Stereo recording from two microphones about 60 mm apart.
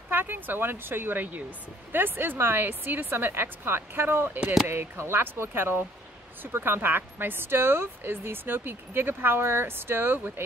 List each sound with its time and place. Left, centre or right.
0.1 s speech: right